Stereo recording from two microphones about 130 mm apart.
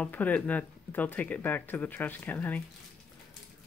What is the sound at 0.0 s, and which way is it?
Speech, 10° left (ahead or behind).